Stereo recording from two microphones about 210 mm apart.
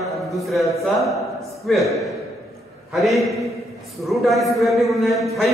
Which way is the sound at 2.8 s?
Centre (ahead or behind).